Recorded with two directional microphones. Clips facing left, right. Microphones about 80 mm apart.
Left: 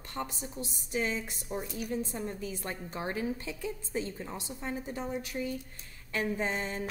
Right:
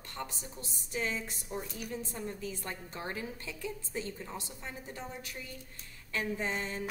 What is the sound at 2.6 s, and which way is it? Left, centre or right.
A woman's voice, left.